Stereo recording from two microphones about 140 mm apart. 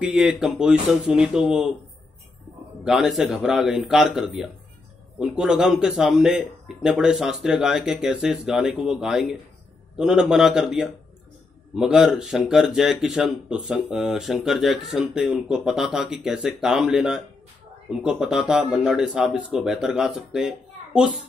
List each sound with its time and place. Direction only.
0.0 s speech: 5° right (ahead or behind)
2.8 s speech: 5° right (ahead or behind)